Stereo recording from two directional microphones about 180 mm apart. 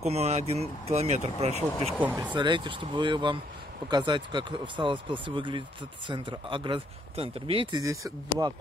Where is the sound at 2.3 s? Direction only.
25° right (ahead or behind).